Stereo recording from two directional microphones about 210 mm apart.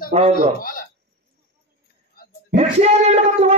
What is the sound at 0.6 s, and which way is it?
Speech, 40° left (ahead or behind).